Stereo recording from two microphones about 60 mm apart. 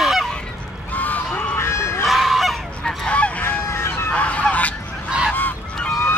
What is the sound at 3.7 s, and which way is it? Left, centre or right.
Fowl, left.